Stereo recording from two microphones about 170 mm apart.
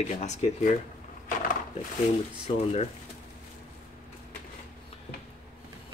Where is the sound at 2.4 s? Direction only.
40° left (ahead or behind).